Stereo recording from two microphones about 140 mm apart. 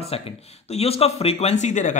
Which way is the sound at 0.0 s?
45° left (ahead or behind).